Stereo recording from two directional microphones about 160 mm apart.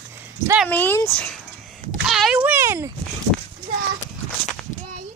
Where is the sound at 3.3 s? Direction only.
5° left (ahead or behind).